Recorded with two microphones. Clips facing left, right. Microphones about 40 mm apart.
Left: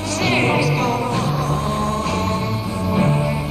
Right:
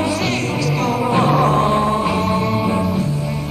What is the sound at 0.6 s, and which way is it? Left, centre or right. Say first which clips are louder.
Music: right 1 dB; centre.